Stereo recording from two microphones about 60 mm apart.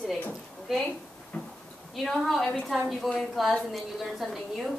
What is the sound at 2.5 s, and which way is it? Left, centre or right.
Child singing, centre.